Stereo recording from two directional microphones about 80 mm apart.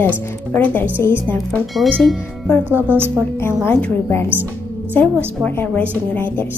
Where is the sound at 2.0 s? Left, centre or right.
Centre.